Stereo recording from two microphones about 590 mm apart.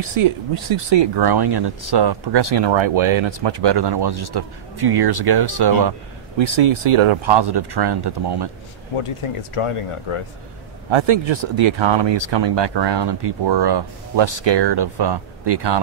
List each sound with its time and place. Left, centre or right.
0.1 s speech: right
8.9 s speech: left
10.9 s speech: right